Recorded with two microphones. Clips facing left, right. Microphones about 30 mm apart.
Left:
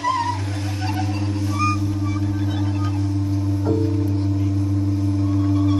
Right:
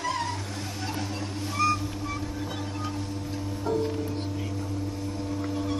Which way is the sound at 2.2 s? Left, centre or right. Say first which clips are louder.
Left 9 dB; centre.